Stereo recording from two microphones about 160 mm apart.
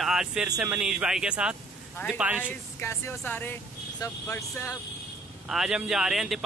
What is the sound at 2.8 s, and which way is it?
Speech, 15° left (ahead or behind).